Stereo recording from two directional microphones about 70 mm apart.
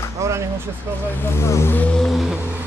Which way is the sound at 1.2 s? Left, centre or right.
Left.